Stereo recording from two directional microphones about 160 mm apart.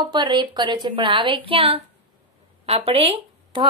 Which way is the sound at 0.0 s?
30° right (ahead or behind).